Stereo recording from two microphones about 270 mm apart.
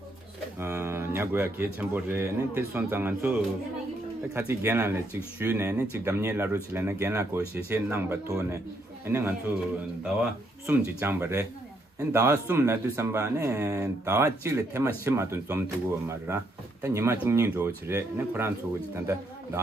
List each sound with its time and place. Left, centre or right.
0.6 s speech: centre
10.7 s speech: centre